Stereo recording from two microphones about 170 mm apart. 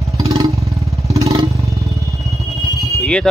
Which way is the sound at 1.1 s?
20° right (ahead or behind).